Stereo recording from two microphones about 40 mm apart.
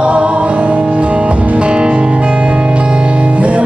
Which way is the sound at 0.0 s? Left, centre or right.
Right.